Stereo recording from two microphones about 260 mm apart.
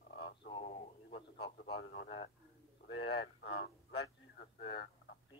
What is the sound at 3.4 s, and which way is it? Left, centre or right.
Speech, left.